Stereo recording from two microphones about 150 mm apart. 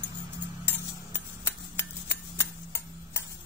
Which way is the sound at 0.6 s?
15° left (ahead or behind).